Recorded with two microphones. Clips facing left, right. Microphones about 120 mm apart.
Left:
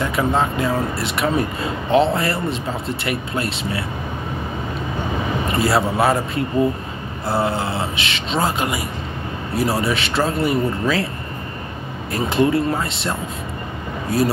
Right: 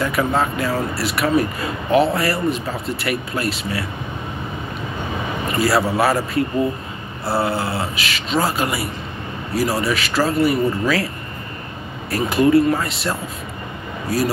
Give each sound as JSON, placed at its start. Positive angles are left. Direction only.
{"t": 0.0, "sound": "speech", "side_deg": 25}
{"t": 5.5, "sound": "speech", "side_deg": 25}
{"t": 7.4, "sound": "speech", "side_deg": 25}
{"t": 12.1, "sound": "speech", "side_deg": 25}